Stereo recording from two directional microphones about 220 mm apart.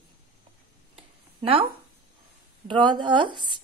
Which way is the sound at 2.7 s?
20° right (ahead or behind).